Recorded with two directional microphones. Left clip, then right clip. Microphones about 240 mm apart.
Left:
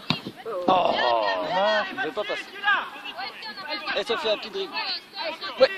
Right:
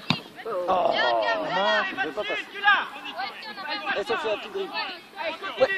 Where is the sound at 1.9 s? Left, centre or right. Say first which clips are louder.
Even; right.